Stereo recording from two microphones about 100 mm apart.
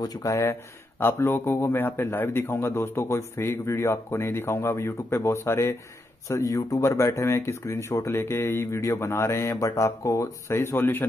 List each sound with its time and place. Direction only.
0.0 s speech: 35° left (ahead or behind)